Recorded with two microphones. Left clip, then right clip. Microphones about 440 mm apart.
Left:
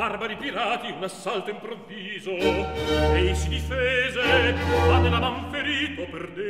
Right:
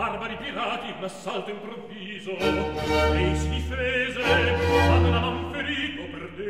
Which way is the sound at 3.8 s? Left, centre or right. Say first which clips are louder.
Left 2 dB; centre.